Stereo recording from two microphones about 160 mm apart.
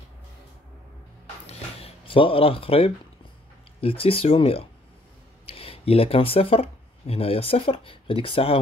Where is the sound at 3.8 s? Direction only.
35° left (ahead or behind).